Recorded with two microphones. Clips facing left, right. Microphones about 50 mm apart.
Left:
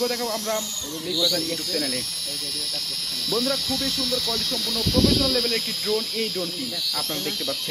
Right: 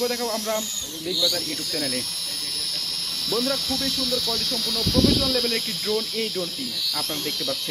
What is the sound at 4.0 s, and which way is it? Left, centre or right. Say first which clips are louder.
Speech: even; left.